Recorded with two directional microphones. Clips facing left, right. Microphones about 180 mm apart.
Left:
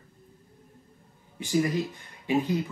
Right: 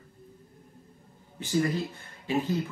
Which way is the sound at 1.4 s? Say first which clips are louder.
Left 1 dB; 15° left (ahead or behind).